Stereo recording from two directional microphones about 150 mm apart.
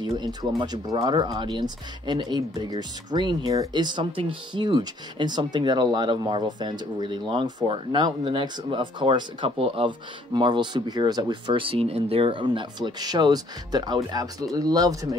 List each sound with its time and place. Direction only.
0.0 s speech: 25° right (ahead or behind)